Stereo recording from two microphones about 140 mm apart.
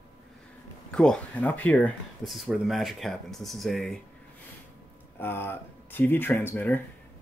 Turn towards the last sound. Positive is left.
turn(degrees=15)  # may be behind; listen again after turning